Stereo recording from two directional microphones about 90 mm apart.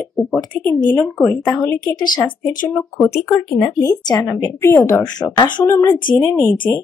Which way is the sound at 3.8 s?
35° left (ahead or behind).